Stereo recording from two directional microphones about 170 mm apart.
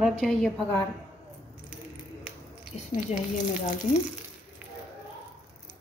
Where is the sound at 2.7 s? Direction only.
40° left (ahead or behind).